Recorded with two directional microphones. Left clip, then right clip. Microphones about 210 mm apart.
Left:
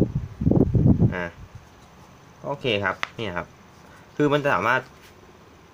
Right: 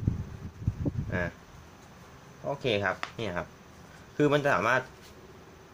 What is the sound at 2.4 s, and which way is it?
Speech, 20° left (ahead or behind).